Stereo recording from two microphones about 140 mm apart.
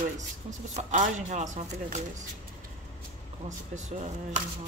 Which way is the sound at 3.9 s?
55° right (ahead or behind).